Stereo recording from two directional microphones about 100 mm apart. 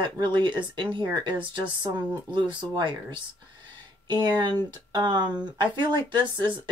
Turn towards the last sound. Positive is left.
turn(degrees=-50)  # may be behind; listen again after turning